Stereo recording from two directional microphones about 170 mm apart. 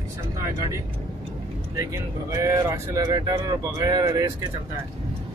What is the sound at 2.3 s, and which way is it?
Speech, 15° right (ahead or behind).